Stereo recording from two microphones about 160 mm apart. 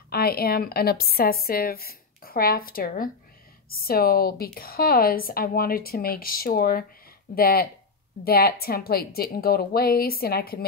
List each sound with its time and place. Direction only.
0.1 s speech: 75° left (ahead or behind)